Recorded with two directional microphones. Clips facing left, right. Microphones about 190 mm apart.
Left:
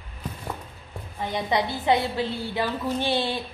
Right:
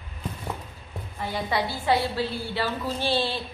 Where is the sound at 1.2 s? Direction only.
20° left (ahead or behind).